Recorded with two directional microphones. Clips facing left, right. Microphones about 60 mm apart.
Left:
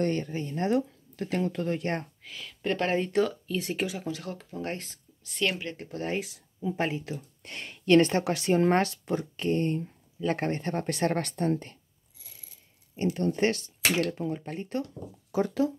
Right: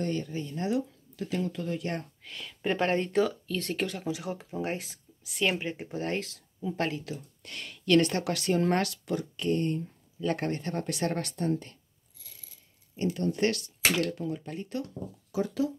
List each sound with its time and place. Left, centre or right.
0.0 s speech: left
2.2 s speech: centre
3.4 s speech: centre
4.0 s speech: centre
6.1 s speech: centre
7.1 s speech: left
12.9 s speech: left